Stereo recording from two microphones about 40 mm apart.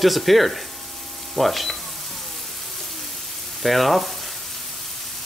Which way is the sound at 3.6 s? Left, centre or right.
Centre.